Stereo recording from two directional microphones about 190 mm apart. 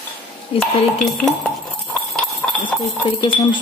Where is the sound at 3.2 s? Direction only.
25° left (ahead or behind).